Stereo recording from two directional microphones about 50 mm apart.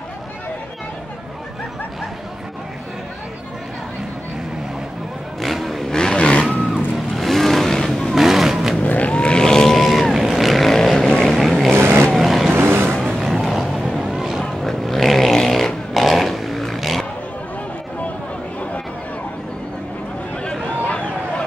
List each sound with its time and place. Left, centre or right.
5.4 s vehicle: centre
5.9 s vehicle: centre
7.2 s vehicle: centre
8.8 s vehicle: left; by 11.5 s centre
11.7 s vehicle: right
12.2 s vehicle: centre
12.5 s vehicle: right
13.2 s vehicle: centre
14.0 s boat: centre
14.4 s a sound: centre
20.8 s a sound: left